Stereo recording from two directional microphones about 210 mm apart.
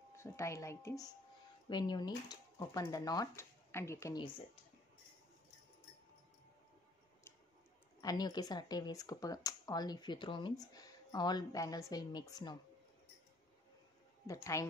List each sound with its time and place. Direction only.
0.1 s speech: 15° left (ahead or behind)
8.0 s speech: 20° left (ahead or behind)
14.2 s speech: 15° left (ahead or behind)